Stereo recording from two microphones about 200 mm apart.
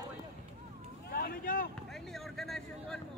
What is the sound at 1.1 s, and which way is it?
Vehicle, 50° left (ahead or behind).